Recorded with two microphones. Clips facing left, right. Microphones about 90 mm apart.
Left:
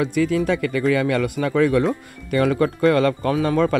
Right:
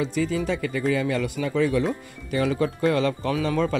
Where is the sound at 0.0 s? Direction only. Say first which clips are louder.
Left 5 dB; 65° left (ahead or behind).